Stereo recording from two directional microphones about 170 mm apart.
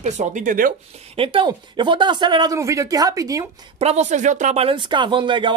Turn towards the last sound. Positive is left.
turn(degrees=-30)  # may be behind; listen again after turning